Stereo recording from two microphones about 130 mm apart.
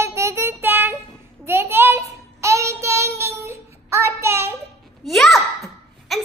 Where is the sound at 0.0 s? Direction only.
20° right (ahead or behind).